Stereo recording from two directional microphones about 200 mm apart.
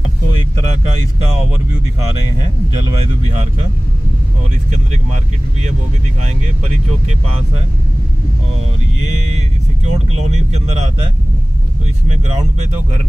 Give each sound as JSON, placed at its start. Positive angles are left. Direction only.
{"t": 9.8, "sound": "speech", "side_deg": -35}
{"t": 12.1, "sound": "speech", "side_deg": -35}